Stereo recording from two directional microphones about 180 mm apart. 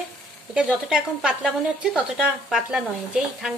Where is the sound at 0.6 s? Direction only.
5° right (ahead or behind).